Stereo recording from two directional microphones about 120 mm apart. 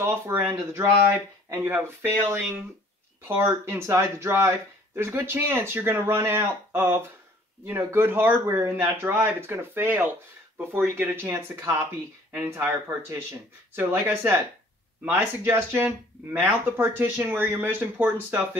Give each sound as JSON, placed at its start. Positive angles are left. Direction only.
{"t": 0.0, "sound": "speech", "side_deg": -20}
{"t": 13.7, "sound": "speech", "side_deg": -20}